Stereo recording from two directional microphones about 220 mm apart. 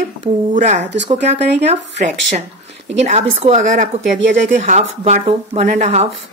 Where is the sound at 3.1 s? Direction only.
30° right (ahead or behind).